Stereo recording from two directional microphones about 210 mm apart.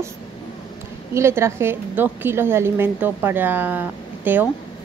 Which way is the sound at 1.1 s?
10° right (ahead or behind).